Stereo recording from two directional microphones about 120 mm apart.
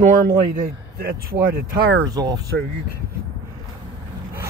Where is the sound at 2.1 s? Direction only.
35° right (ahead or behind).